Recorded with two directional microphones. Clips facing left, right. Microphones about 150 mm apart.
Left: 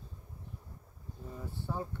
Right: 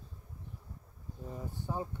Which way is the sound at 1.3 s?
15° right (ahead or behind).